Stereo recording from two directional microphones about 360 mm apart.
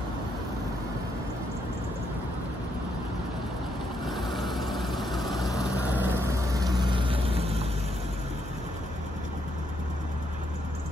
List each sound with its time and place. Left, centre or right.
4.0 s vehicle: centre